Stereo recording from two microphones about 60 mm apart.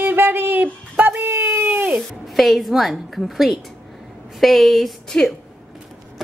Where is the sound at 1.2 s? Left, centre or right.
Right.